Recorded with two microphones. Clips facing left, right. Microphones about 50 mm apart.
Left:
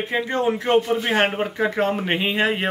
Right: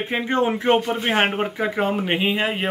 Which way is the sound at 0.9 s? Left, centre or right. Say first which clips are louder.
Even; centre.